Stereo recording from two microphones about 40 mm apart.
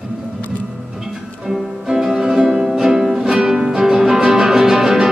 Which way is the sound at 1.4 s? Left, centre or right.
Centre.